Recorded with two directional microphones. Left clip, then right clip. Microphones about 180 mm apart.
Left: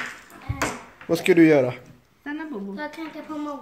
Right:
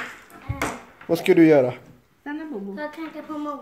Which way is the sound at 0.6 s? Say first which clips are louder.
Left 1 dB; 5° right (ahead or behind).